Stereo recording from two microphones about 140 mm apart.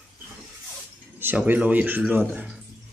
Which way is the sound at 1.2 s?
15° right (ahead or behind).